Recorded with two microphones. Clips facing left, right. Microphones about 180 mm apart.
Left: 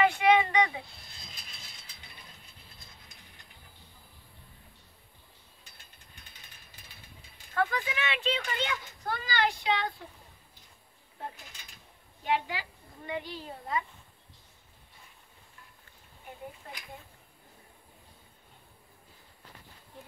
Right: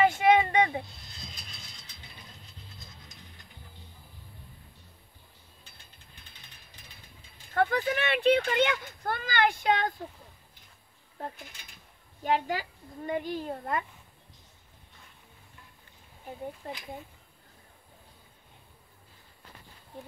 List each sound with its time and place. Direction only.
0.0 s a sound: 45° right (ahead or behind)
7.5 s speech: 55° right (ahead or behind)
12.2 s a woman's voice: 45° right (ahead or behind)